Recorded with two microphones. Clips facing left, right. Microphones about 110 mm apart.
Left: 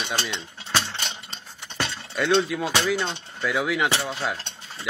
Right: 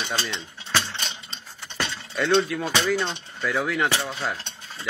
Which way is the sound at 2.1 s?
Centre (ahead or behind).